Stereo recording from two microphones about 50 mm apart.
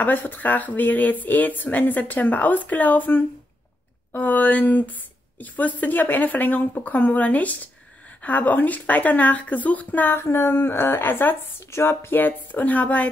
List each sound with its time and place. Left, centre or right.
0.0 s speech: left
10.1 s speech: left